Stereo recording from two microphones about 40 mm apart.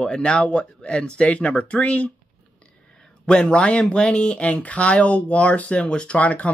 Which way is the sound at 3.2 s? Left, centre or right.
Left.